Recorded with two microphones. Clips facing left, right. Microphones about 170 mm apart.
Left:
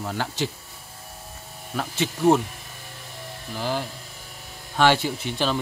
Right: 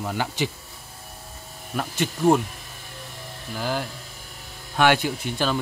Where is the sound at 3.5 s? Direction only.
5° right (ahead or behind).